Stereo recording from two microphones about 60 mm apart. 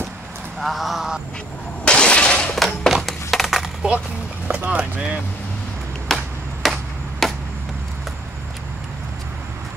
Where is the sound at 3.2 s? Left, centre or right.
Centre.